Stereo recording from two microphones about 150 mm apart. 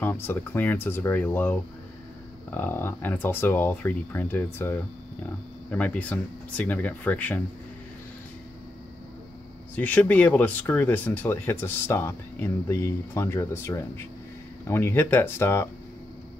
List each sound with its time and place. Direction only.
0.0 s speech: 15° left (ahead or behind)
9.8 s speech: 10° left (ahead or behind)